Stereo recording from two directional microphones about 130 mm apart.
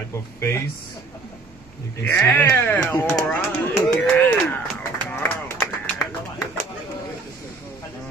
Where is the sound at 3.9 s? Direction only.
15° left (ahead or behind).